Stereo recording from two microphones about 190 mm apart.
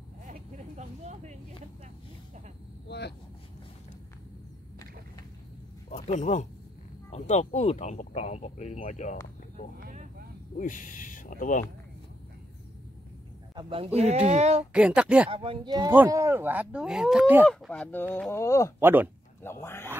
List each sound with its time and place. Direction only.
0.3 s vehicle: 40° right (ahead or behind)
2.9 s vehicle: 60° left (ahead or behind)
5.9 s a sound: 35° left (ahead or behind)
7.1 s speech: 35° left (ahead or behind)
9.8 s vehicle: 45° right (ahead or behind)
10.6 s speech: 45° left (ahead or behind)
13.6 s speech: 30° right (ahead or behind)
14.7 s speech: 5° right (ahead or behind)
15.3 s speech: 25° right (ahead or behind)
15.9 s speech: 10° right (ahead or behind)
17.5 s honk: 5° left (ahead or behind)
18.8 s speech: 10° right (ahead or behind)
19.6 s honk: 10° left (ahead or behind)